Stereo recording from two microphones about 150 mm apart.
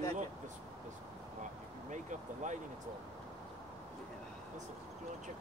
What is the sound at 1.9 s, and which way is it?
Speech, 55° right (ahead or behind).